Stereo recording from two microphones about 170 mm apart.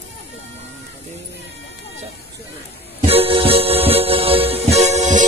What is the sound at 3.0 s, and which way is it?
Music, 35° right (ahead or behind).